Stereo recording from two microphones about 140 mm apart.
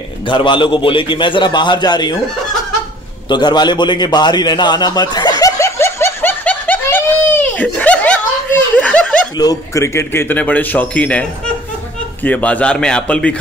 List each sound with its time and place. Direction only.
0.3 s a man's voice: 35° left (ahead or behind)
3.3 s a man's voice: 30° left (ahead or behind)
5.4 s snicker: 20° left (ahead or behind)
9.4 s a man's voice: 25° left (ahead or behind); by 13.4 s 10° left (ahead or behind)